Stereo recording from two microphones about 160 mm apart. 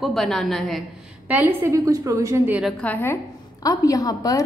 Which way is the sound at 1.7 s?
20° right (ahead or behind).